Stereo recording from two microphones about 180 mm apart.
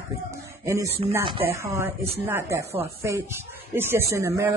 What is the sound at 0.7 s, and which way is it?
Speech, 15° right (ahead or behind).